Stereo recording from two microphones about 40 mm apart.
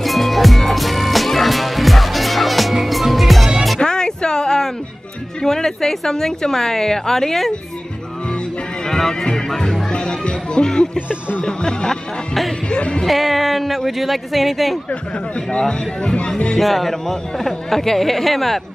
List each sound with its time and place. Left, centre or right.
0.0 s music: centre
3.8 s a sound: centre
5.4 s a woman's voice: centre
8.8 s speech: centre
13.0 s speech: centre
16.5 s speech: centre